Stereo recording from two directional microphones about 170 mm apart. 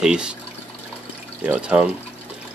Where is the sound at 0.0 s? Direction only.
5° right (ahead or behind).